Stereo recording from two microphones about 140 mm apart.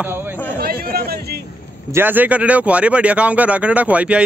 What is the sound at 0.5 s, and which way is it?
Chatter, 90° right.